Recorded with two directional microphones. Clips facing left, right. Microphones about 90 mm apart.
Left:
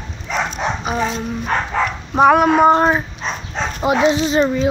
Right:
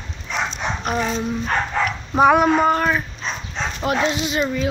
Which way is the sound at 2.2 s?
Centre (ahead or behind).